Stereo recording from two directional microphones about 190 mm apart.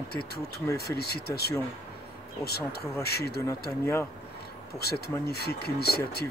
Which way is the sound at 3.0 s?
55° left (ahead or behind).